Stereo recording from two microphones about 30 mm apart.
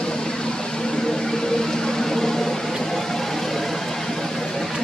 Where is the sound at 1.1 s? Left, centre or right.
Centre.